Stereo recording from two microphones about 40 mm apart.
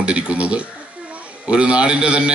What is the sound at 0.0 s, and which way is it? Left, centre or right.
Speech, right.